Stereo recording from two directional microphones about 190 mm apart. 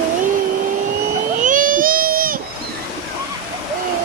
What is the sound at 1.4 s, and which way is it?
Baby cry, 45° right (ahead or behind).